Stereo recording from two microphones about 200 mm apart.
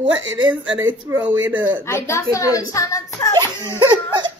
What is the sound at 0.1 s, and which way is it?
Speech, 70° right (ahead or behind).